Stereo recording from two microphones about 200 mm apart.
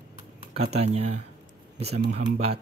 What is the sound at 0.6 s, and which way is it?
Speech, 30° right (ahead or behind).